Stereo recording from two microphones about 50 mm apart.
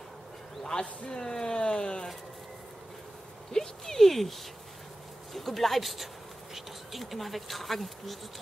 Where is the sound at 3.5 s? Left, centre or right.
Centre.